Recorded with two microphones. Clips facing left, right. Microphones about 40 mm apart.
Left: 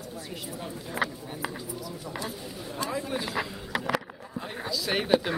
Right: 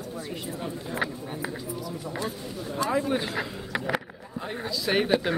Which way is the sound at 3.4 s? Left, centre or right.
Centre.